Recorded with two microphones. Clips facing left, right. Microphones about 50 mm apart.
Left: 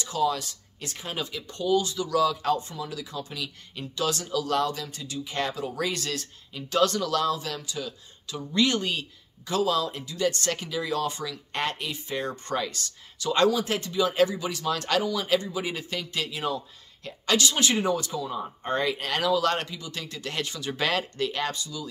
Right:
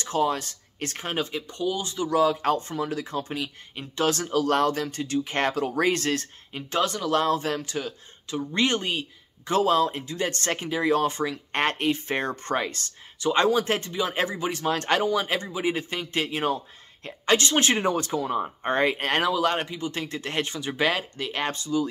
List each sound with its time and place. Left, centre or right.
0.0 s speech: right
1.5 s speech: centre
1.9 s speech: right
6.8 s speech: centre
7.1 s speech: right
8.3 s speech: right
19.3 s speech: centre
19.8 s speech: right; by 21.4 s centre
21.4 s speech: right